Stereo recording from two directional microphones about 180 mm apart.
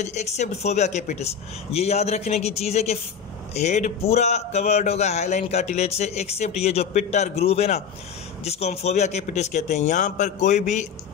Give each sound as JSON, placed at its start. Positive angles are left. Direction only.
{"t": 0.0, "sound": "a man's voice", "side_deg": 40}